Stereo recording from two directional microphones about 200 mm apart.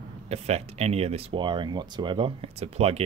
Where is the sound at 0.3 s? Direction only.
30° right (ahead or behind).